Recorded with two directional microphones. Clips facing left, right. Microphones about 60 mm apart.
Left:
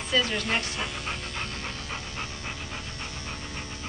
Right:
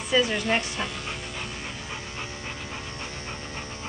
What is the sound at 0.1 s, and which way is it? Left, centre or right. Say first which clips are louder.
Speech: right 3 dB; centre.